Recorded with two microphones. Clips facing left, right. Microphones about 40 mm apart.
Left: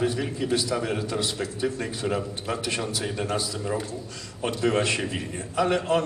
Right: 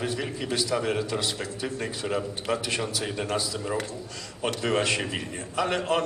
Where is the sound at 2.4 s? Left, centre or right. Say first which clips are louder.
Right 2 dB; right.